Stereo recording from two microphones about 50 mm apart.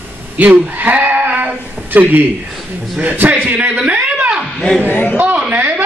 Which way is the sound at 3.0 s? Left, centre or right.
Right.